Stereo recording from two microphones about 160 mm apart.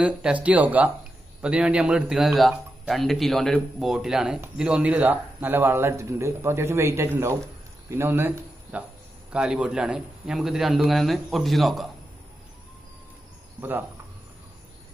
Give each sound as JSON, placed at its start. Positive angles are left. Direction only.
{"t": 0.0, "sound": "a man's voice", "side_deg": -5}
{"t": 13.6, "sound": "speech", "side_deg": -10}